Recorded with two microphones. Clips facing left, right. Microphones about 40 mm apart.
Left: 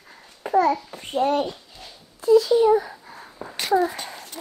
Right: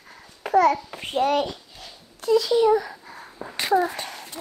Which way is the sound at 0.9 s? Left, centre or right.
Right.